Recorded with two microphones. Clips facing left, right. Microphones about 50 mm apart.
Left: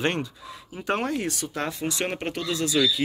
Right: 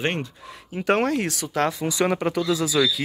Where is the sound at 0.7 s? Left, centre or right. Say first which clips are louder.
Right 5 dB; right.